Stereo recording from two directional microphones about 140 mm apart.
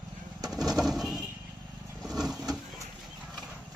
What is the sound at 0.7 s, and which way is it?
Pigeon, centre (ahead or behind).